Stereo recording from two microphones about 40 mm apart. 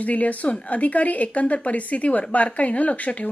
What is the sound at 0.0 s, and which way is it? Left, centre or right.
Speech, left.